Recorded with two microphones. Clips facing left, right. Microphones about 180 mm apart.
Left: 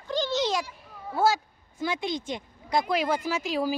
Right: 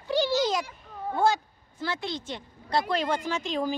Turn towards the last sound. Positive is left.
turn(degrees=5)  # may be behind; listen again after turning